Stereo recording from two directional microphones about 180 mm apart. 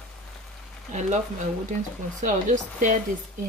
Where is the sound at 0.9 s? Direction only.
40° right (ahead or behind).